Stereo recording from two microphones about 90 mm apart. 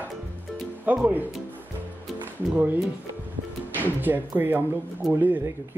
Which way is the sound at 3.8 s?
20° right (ahead or behind).